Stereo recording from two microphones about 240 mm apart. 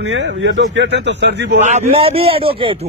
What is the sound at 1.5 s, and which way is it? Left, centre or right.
A man's voice, right.